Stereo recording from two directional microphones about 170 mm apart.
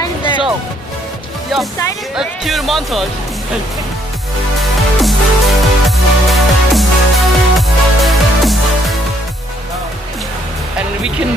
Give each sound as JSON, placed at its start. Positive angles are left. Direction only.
{"t": 0.0, "sound": "music", "side_deg": 30}
{"t": 2.1, "sound": "speech", "side_deg": 0}
{"t": 4.6, "sound": "music", "side_deg": 0}
{"t": 11.0, "sound": "speech", "side_deg": -5}